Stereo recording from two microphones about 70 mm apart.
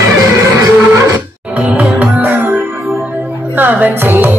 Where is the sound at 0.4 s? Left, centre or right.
Right.